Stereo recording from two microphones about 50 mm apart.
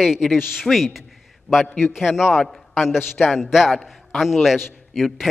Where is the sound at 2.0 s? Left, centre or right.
Centre.